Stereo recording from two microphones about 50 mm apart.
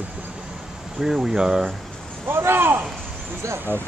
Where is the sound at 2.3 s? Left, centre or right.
Right.